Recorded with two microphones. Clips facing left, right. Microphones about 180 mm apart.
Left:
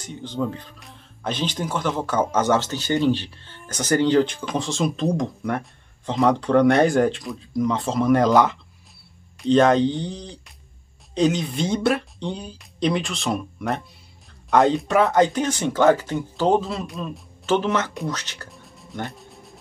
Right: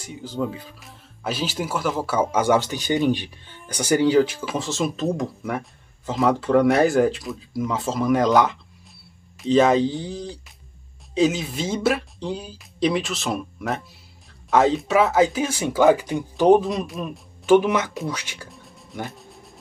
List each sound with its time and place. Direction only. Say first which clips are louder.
0.0 s speech: even; 5° right (ahead or behind)
18.5 s music: left 1 dB; centre (ahead or behind)